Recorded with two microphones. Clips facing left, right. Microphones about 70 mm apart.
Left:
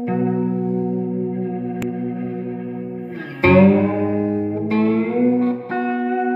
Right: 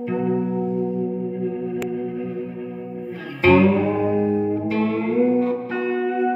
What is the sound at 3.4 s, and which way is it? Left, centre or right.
Music, left.